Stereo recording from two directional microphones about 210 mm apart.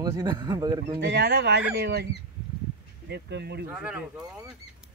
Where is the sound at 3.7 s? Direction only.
5° right (ahead or behind).